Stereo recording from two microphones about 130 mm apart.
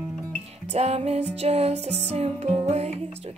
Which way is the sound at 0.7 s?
55° right (ahead or behind).